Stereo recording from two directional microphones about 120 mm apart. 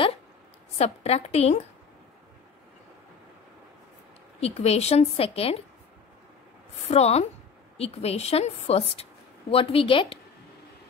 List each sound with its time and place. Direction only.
0.7 s a woman's voice: 60° left (ahead or behind)
4.4 s a woman's voice: 60° left (ahead or behind)
6.9 s a woman's voice: 60° left (ahead or behind)